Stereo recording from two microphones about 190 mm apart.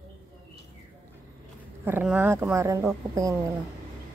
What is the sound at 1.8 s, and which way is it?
Speech, 10° right (ahead or behind).